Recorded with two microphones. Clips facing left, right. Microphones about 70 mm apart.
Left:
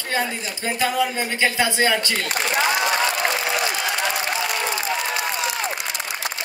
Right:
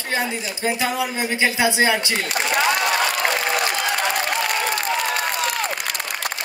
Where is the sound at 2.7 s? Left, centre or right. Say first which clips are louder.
Even; right.